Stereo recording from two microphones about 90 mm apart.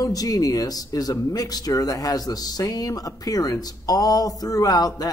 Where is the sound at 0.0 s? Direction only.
45° left (ahead or behind).